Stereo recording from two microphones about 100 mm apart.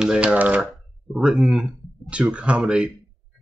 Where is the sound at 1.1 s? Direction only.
Centre (ahead or behind).